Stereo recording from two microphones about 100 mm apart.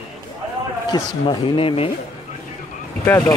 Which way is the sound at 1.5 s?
65° left (ahead or behind).